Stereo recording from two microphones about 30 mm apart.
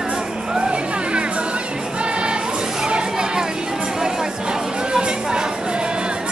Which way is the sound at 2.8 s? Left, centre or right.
Right.